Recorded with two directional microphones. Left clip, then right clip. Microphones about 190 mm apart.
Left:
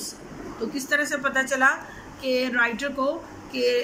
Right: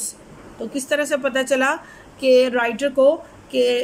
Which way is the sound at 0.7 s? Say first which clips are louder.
Right 4 dB; 45° right (ahead or behind).